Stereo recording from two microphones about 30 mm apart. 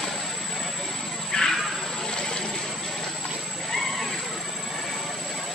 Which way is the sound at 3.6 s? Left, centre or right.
Centre.